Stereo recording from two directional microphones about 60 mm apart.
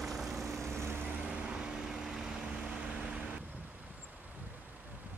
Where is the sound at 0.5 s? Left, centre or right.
Right.